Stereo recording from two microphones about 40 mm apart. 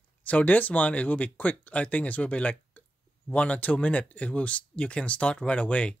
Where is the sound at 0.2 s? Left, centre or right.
Left.